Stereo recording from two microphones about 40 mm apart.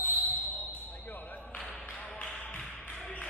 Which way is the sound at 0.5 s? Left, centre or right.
Left.